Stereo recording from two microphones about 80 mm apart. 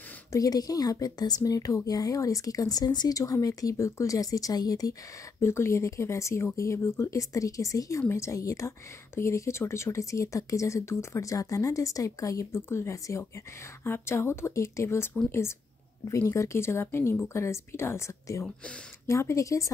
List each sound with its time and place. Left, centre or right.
0.3 s a woman's voice: left
5.4 s speech: left
16.1 s speech: left